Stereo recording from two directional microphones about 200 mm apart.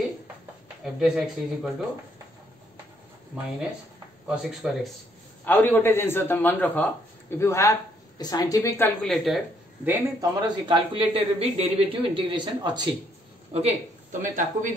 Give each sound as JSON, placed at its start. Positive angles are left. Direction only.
{"t": 0.9, "sound": "speech", "side_deg": -5}
{"t": 4.4, "sound": "speech", "side_deg": 0}
{"t": 5.4, "sound": "a man's voice", "side_deg": 10}
{"t": 9.8, "sound": "a man's voice", "side_deg": -20}
{"t": 13.5, "sound": "speech", "side_deg": -30}